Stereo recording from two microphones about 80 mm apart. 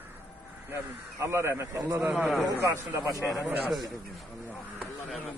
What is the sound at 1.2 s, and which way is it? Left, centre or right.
Speech, right.